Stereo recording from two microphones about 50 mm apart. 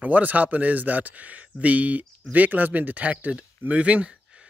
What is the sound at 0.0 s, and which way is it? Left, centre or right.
Speech, right.